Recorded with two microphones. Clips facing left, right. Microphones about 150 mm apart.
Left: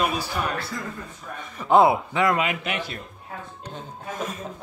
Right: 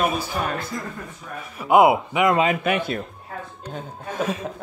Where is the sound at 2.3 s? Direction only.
35° right (ahead or behind).